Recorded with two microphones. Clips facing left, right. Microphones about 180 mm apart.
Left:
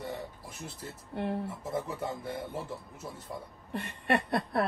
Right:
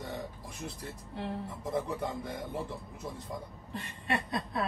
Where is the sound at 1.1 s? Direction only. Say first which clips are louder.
Left 5 dB; 60° left (ahead or behind).